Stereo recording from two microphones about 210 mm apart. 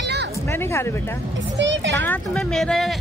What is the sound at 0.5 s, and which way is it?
Speech, 10° left (ahead or behind).